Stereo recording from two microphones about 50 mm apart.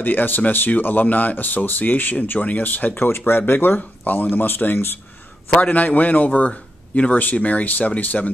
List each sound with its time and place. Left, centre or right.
0.0 s speech: left
3.1 s speech: left
5.5 s a man's voice: left